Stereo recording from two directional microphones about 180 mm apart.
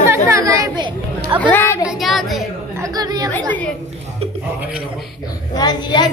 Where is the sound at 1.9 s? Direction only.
Centre (ahead or behind).